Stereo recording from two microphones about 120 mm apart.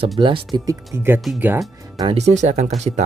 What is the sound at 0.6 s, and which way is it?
Speech, 25° right (ahead or behind).